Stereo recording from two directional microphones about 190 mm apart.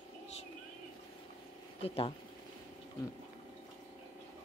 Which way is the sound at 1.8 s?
30° left (ahead or behind).